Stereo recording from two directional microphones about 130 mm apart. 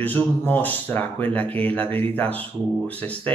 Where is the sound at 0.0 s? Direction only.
15° left (ahead or behind).